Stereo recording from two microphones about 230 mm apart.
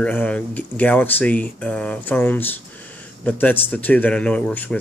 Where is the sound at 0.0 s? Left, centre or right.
Centre.